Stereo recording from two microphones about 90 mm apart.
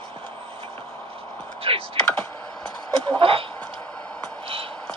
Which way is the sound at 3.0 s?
90° right.